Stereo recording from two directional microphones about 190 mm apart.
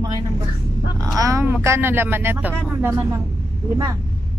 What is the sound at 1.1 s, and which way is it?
Speech, 15° right (ahead or behind).